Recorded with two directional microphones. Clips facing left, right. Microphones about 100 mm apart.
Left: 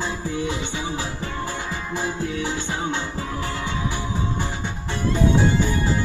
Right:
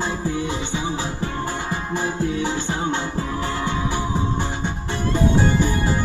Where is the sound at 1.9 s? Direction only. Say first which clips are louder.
Right 3 dB; 25° right (ahead or behind).